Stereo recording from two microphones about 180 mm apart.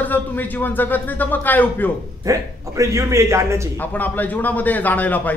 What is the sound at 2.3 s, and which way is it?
A man's voice, 15° right (ahead or behind).